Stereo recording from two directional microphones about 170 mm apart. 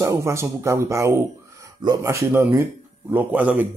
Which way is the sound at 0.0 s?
15° right (ahead or behind).